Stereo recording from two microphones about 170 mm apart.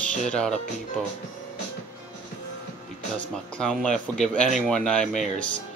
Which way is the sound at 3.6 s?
5° left (ahead or behind).